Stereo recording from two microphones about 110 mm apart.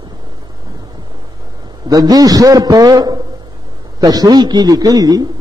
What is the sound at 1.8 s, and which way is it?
A man's voice, 35° right (ahead or behind).